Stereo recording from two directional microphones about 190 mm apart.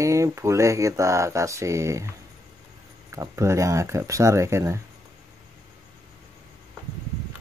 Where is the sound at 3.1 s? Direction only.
15° right (ahead or behind).